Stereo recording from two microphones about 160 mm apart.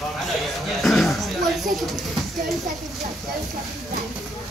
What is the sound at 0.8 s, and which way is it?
Speech, centre (ahead or behind).